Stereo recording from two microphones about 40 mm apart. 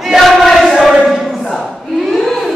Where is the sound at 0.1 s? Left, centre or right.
Centre.